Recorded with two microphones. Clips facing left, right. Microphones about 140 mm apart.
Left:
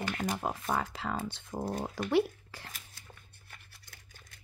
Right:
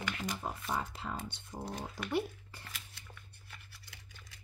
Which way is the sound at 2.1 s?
90° left.